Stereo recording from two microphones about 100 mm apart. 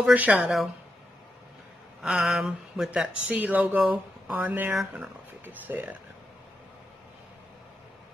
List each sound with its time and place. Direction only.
0.0 s speech: 15° right (ahead or behind)
2.0 s speech: 5° right (ahead or behind)
3.3 s speech: 15° right (ahead or behind)